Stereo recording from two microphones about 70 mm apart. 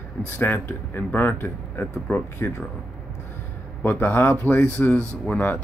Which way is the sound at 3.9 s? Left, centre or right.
Left.